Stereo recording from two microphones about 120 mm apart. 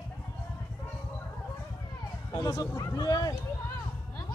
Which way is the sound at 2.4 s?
30° left (ahead or behind).